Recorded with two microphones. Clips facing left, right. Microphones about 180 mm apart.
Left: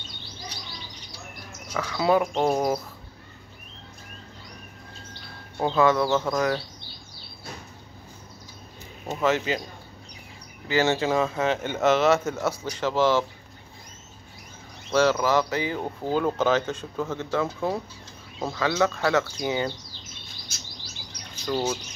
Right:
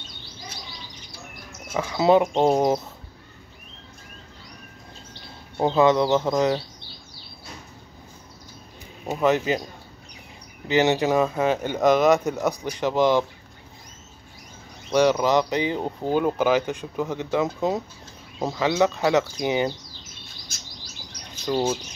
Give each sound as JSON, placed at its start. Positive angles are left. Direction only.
{"t": 1.7, "sound": "speech", "side_deg": -25}
{"t": 5.6, "sound": "speech", "side_deg": -20}
{"t": 9.0, "sound": "speech", "side_deg": -15}
{"t": 10.7, "sound": "speech", "side_deg": -20}
{"t": 14.9, "sound": "speech", "side_deg": -15}
{"t": 21.5, "sound": "speech", "side_deg": -20}